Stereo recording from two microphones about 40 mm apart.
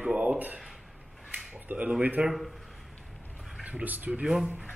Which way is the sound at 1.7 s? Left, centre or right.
Right.